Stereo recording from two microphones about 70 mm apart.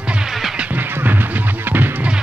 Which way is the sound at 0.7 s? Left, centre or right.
Right.